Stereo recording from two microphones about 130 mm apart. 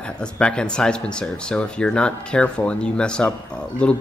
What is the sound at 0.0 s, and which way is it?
A man's voice, 5° left (ahead or behind).